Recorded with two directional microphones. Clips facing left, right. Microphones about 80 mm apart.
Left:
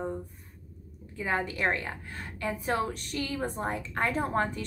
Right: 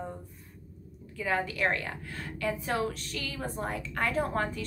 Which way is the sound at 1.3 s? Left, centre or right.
Left.